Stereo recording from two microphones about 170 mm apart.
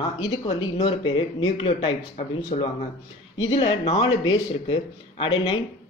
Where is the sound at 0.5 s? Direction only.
35° left (ahead or behind).